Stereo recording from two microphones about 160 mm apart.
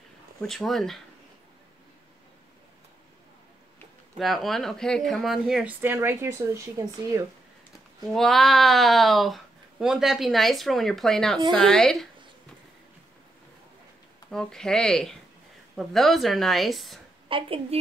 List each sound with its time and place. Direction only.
0.4 s speech: centre (ahead or behind)
4.2 s speech: centre (ahead or behind); by 7.2 s 20° right (ahead or behind)
8.1 s speech: centre (ahead or behind)
14.3 s speech: 5° left (ahead or behind)
17.3 s a woman's voice: 35° right (ahead or behind)